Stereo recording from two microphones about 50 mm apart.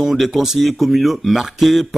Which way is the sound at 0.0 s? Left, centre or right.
Centre.